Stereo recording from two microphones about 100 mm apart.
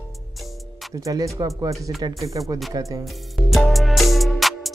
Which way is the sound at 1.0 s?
35° right (ahead or behind).